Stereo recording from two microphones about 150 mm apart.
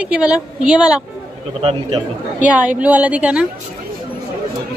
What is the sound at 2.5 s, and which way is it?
A woman's voice, 10° right (ahead or behind).